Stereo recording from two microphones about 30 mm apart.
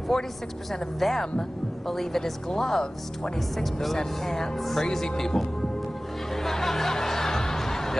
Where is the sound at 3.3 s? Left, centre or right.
Centre.